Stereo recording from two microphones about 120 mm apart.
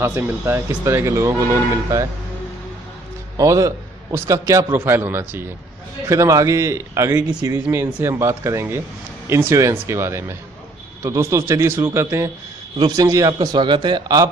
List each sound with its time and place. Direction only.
0.0 s a man's voice: 20° right (ahead or behind)
3.3 s a man's voice: 25° right (ahead or behind)
12.7 s a man's voice: 35° right (ahead or behind)